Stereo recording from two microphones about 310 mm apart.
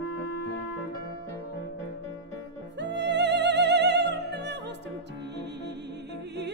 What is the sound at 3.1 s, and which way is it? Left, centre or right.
Music, right.